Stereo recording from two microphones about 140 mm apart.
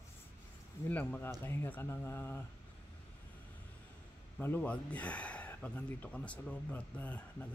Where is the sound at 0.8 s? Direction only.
15° left (ahead or behind).